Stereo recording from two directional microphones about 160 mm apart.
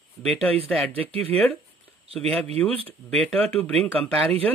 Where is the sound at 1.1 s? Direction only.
40° right (ahead or behind).